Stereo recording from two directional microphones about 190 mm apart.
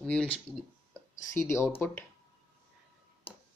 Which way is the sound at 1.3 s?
15° left (ahead or behind).